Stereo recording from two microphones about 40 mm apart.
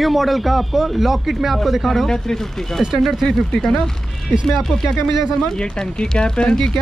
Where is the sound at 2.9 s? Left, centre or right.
Centre.